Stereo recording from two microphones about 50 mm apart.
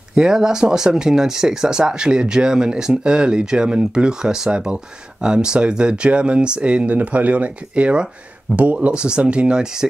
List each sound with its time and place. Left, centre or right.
0.1 s speech: centre